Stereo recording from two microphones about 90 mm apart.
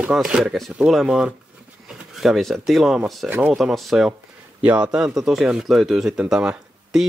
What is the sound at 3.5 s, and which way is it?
Speech, centre (ahead or behind).